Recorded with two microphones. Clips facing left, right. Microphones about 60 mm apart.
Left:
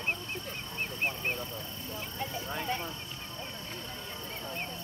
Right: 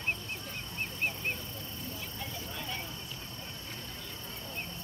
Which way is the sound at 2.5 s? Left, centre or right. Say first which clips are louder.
Left 7 dB; left.